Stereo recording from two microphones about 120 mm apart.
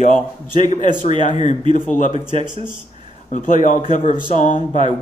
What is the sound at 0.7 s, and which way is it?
Speech, 90° left.